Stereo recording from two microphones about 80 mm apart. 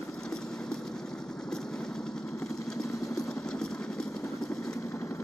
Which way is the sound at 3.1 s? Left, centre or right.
Centre.